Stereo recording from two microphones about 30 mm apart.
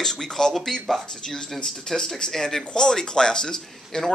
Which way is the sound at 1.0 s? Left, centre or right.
Left.